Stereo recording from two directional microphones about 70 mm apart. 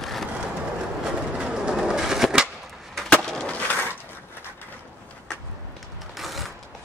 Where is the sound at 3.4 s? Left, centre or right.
Left.